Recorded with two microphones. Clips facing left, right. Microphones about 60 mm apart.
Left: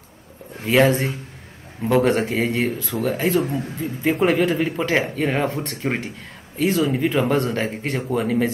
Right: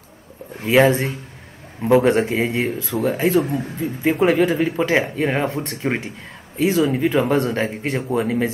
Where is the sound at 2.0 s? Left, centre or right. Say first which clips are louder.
Right 2 dB; right.